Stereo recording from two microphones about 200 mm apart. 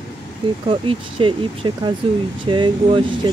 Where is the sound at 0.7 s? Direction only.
25° right (ahead or behind).